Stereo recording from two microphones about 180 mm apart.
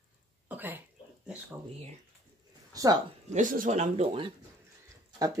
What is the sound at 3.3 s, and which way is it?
Speech, 45° right (ahead or behind).